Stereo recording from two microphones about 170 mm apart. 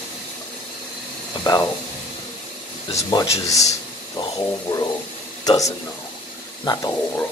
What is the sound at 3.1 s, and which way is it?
Speech, 20° left (ahead or behind).